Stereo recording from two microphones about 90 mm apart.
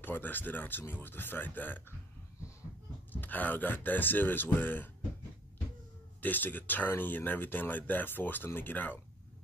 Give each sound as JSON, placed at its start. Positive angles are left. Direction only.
{"t": 0.0, "sound": "speech", "side_deg": 20}
{"t": 3.1, "sound": "speech", "side_deg": 20}
{"t": 6.2, "sound": "speech", "side_deg": 20}